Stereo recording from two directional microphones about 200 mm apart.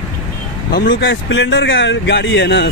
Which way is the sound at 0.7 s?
50° left (ahead or behind).